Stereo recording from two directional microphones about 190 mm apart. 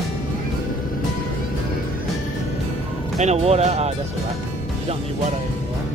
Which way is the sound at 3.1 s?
35° right (ahead or behind).